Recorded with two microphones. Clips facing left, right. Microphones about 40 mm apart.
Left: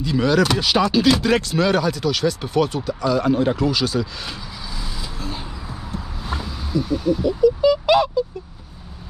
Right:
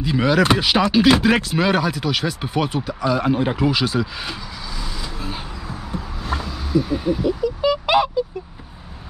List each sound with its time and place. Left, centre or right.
0.0 s speech: centre
6.2 s vehicle: centre
6.9 s speech: centre